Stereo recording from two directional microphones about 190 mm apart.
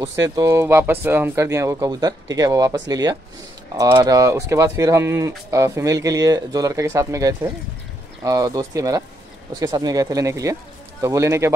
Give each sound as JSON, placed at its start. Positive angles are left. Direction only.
{"t": 0.0, "sound": "speech", "side_deg": -15}